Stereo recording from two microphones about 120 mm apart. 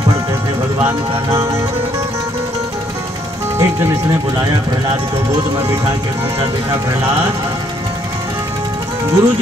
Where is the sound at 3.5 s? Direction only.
25° right (ahead or behind).